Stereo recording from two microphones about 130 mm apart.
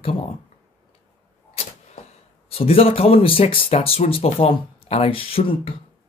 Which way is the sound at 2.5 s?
50° left (ahead or behind).